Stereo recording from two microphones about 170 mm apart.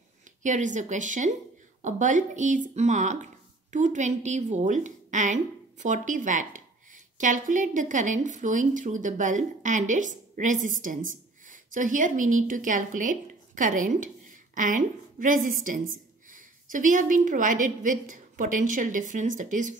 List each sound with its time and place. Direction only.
0.4 s a woman's voice: 45° right (ahead or behind)